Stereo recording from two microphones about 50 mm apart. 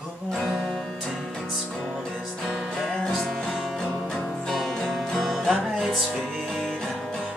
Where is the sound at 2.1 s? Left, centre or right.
Centre.